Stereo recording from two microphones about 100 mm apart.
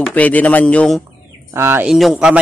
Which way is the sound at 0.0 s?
15° left (ahead or behind).